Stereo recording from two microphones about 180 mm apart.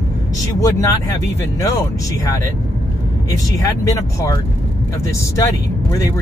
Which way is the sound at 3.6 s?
20° left (ahead or behind).